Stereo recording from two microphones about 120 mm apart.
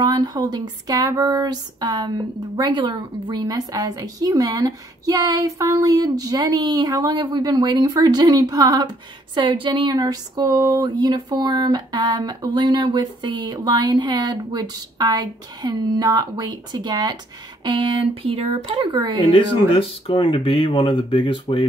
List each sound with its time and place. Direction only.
0.0 s a woman's voice: 35° right (ahead or behind)
17.6 s speech: 45° right (ahead or behind)
19.7 s speech: 50° left (ahead or behind)